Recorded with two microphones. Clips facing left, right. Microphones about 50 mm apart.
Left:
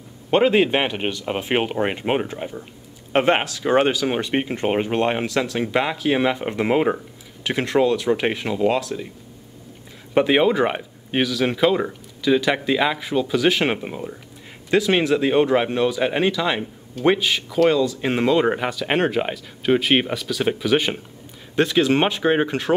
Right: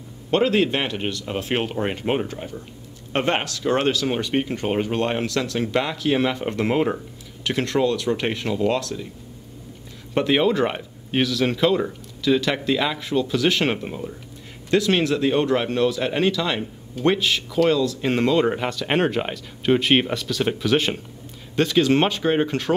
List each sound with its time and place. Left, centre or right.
0.3 s speech: centre
10.1 s speech: centre